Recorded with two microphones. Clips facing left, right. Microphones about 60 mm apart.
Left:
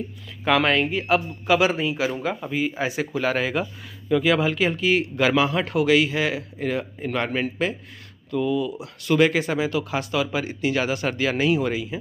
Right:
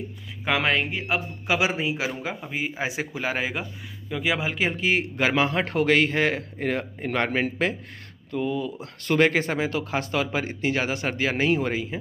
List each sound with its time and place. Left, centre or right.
0.5 s speech: centre
0.8 s a man's voice: centre
1.5 s a man's voice: centre
4.5 s speech: right
8.3 s speech: right